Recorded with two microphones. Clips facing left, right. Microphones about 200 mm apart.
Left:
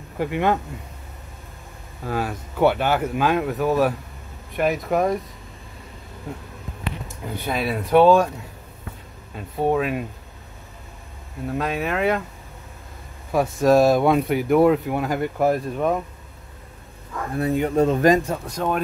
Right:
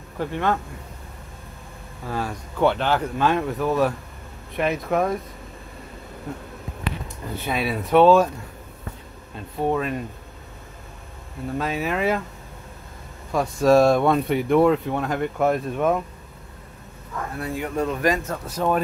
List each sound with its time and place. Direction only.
0.2 s speech: 15° left (ahead or behind)
2.0 s speech: 5° left (ahead or behind)
7.4 s speech: centre (ahead or behind)
9.3 s speech: 5° left (ahead or behind)
11.5 s speech: centre (ahead or behind)
13.3 s speech: 5° left (ahead or behind)
17.4 s speech: 20° left (ahead or behind)
18.5 s speech: 5° right (ahead or behind)